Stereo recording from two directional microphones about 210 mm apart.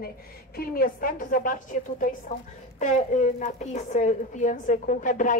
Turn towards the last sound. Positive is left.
turn(degrees=40)  # may be behind; listen again after turning